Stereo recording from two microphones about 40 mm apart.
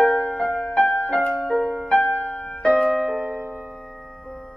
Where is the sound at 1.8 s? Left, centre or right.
Left.